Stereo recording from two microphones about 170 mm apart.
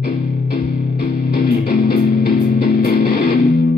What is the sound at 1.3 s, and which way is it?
Music, 65° left (ahead or behind).